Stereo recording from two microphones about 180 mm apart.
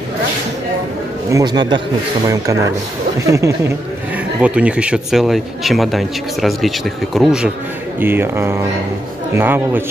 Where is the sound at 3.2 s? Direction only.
15° right (ahead or behind); by 7.5 s centre (ahead or behind).